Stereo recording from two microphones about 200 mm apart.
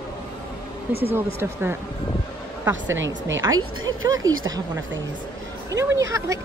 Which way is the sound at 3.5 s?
90° right.